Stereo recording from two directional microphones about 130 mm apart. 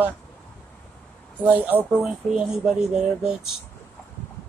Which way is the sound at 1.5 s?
15° right (ahead or behind).